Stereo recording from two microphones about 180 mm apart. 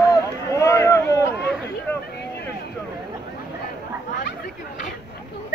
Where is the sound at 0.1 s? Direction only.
15° left (ahead or behind).